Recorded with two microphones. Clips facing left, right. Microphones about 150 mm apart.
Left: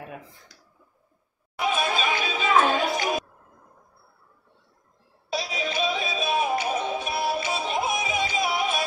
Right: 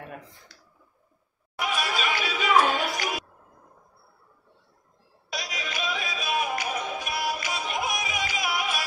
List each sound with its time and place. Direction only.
0.0 s speech: centre (ahead or behind)
1.6 s chatter: 25° left (ahead or behind)
2.7 s music: 25° left (ahead or behind)
5.3 s music: 30° left (ahead or behind)